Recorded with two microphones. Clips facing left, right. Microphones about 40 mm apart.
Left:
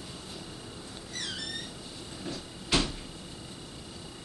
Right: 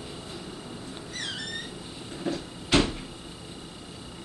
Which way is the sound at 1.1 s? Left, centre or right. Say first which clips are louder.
Right 2 dB; right.